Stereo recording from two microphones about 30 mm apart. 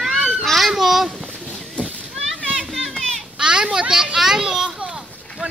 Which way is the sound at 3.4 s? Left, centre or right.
Right.